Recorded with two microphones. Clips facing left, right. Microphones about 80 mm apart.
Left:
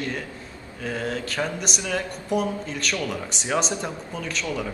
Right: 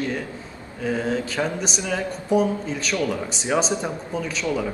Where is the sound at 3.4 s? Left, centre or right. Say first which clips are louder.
Right 3 dB; centre.